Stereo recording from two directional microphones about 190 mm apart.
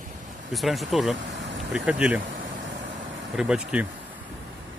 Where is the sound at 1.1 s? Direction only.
70° right (ahead or behind).